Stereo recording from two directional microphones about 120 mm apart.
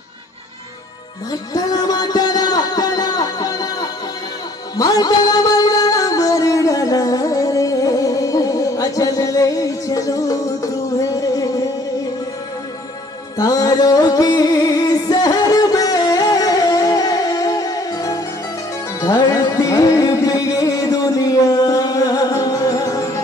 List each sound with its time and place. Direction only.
1.3 s a sound: 35° left (ahead or behind)
4.7 s music: 30° left (ahead or behind)
13.4 s music: 30° left (ahead or behind)